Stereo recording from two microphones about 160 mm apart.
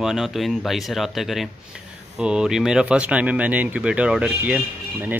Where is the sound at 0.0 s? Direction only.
Centre (ahead or behind).